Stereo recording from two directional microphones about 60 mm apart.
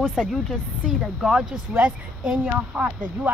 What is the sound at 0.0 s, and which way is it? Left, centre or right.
Speech, centre.